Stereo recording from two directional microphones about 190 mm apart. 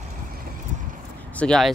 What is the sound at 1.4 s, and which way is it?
Speech, 5° left (ahead or behind).